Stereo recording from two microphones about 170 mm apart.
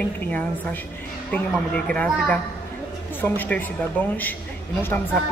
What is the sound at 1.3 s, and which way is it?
A woman's voice, 10° left (ahead or behind).